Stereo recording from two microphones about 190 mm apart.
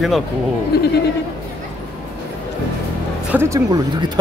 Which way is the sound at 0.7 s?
55° left (ahead or behind).